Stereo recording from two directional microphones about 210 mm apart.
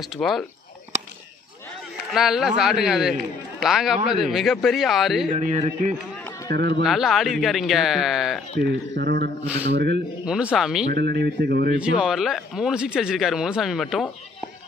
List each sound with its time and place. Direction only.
0.2 s speech: centre (ahead or behind)
2.0 s speech: centre (ahead or behind)
5.3 s speech: 35° right (ahead or behind)
6.5 s speech: 50° right (ahead or behind)
6.8 s speech: centre (ahead or behind)
8.5 s speech: 50° right (ahead or behind)
10.2 s speech: 5° right (ahead or behind)
10.9 s speech: 50° right (ahead or behind)
11.8 s speech: 5° right (ahead or behind)